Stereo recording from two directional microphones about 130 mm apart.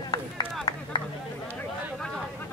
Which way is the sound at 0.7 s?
30° left (ahead or behind).